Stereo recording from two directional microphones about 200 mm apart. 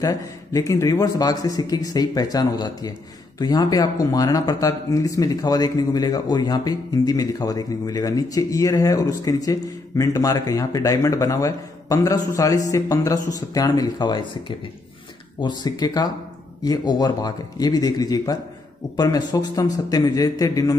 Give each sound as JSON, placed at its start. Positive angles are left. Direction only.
{"t": 0.0, "sound": "speech", "side_deg": 15}
{"t": 15.4, "sound": "speech", "side_deg": 20}